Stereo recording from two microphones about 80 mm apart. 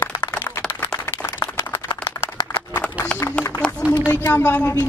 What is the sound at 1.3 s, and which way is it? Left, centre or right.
Clapping, left.